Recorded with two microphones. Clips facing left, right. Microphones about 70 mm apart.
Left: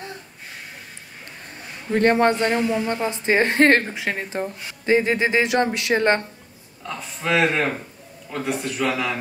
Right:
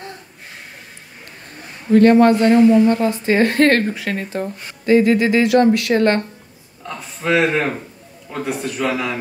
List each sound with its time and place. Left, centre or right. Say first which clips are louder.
1.9 s speech: right 7 dB; left
2.5 s a man's voice: right 10 dB; centre
2.9 s speech: right 5 dB; left
6.8 s a man's voice: right 2 dB; centre